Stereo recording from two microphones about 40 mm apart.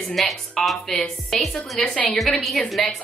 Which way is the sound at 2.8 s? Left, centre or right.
Centre.